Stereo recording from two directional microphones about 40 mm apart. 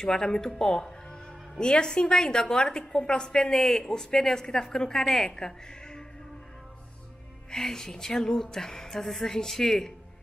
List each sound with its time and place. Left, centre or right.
0.0 s a woman's voice: centre
7.5 s a woman's voice: centre